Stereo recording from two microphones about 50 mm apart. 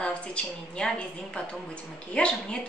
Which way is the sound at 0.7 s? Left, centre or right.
Centre.